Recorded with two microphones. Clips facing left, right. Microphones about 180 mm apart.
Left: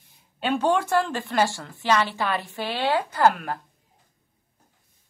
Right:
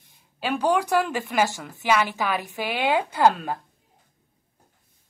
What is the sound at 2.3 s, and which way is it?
A woman's voice, 15° right (ahead or behind).